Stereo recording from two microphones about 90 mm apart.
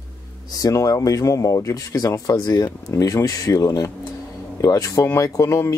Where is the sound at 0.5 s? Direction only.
45° left (ahead or behind).